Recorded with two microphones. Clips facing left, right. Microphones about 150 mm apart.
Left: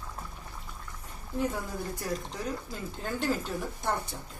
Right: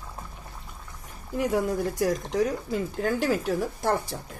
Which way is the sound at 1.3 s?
85° right.